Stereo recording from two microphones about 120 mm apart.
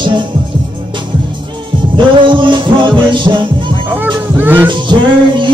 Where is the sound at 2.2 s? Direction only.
45° right (ahead or behind).